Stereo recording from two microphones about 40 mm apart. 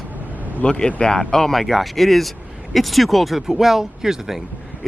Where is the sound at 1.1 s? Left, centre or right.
Centre.